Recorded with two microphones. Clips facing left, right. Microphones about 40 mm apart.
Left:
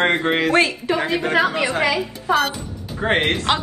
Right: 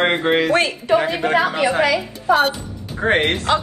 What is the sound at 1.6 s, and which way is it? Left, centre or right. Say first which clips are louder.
Speech: right 3 dB; right.